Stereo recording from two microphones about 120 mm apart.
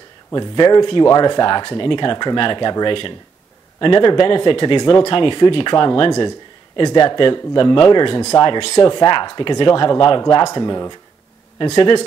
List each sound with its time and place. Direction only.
0.3 s speech: 35° left (ahead or behind)